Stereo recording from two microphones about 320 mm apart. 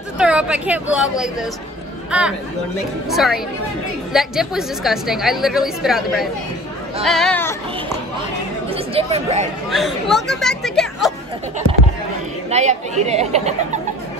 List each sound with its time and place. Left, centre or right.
0.2 s a woman's voice: centre
8.6 s speech: centre
9.7 s speech: centre
12.4 s speech: right